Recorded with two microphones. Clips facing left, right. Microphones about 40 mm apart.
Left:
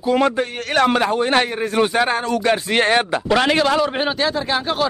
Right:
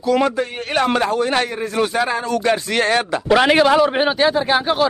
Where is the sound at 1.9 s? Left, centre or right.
Left.